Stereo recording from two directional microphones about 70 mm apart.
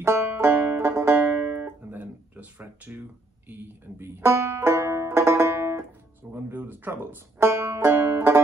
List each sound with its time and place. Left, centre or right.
0.0 s banjo: right
4.0 s banjo: right
6.3 s speech: right